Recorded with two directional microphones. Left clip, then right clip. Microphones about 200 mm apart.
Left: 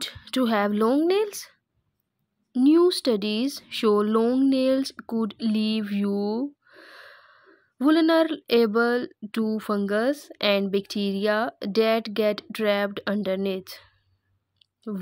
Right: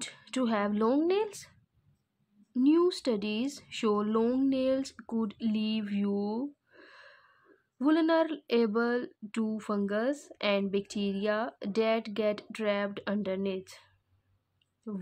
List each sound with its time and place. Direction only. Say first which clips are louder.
0.0 s speech: left 7 dB; 25° left (ahead or behind)